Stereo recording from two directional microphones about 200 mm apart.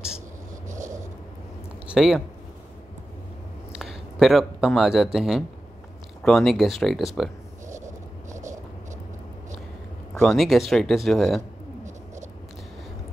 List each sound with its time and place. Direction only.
1.9 s speech: centre (ahead or behind)
3.7 s speech: centre (ahead or behind)
8.3 s vehicle: 35° right (ahead or behind)
10.1 s speech: 5° left (ahead or behind)